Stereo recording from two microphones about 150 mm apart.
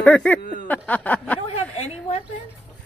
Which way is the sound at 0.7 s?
10° left (ahead or behind).